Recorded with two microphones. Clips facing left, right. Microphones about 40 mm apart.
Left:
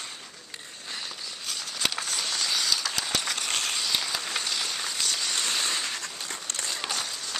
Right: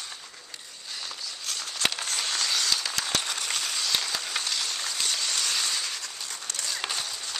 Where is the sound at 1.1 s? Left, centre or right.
Centre.